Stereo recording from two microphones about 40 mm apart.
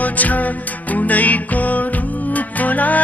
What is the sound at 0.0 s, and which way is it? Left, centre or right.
Music, left.